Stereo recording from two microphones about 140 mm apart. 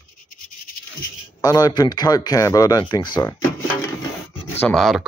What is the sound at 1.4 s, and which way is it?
Speech, 25° left (ahead or behind).